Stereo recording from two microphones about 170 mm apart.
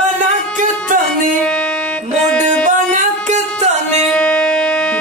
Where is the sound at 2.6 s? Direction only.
50° right (ahead or behind).